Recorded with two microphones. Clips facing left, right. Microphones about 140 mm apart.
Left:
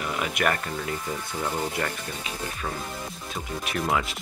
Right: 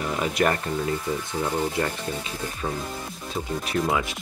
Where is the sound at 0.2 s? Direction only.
30° right (ahead or behind).